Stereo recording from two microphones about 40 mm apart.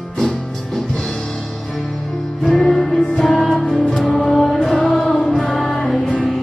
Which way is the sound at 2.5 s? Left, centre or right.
Centre.